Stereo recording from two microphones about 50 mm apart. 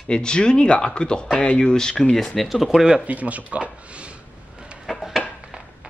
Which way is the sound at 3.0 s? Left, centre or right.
Right.